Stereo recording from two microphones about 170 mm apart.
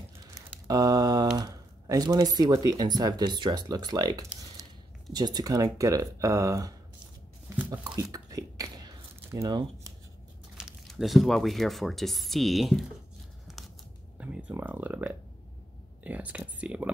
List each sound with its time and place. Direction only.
0.2 s a sound: 20° right (ahead or behind)
1.4 s speech: 20° right (ahead or behind)
7.7 s a sound: 25° right (ahead or behind)
10.6 s speech: centre (ahead or behind)
13.5 s scissors: centre (ahead or behind)
14.1 s speech: 10° right (ahead or behind)